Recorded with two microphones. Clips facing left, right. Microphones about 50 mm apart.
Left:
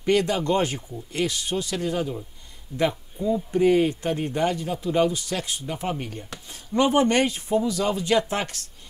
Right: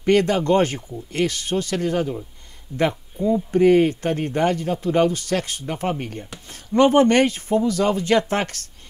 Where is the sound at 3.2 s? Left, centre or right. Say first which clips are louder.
Right 4 dB; right.